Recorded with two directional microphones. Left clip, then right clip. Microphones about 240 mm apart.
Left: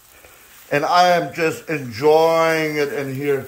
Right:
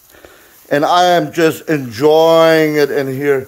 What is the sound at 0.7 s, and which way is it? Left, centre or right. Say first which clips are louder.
A man's voice: right 4 dB; right.